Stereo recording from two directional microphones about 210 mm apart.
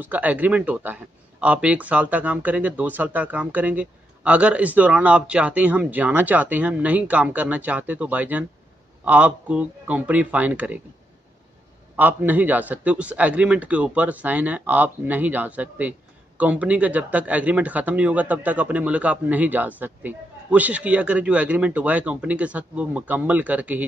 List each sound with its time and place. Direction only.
0.0 s a man's voice: 10° right (ahead or behind)
12.0 s a man's voice: 10° right (ahead or behind)